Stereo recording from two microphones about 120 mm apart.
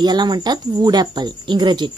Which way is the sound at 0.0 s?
35° right (ahead or behind).